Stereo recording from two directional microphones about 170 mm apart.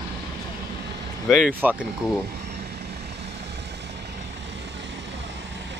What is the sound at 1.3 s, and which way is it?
Speech, 10° right (ahead or behind).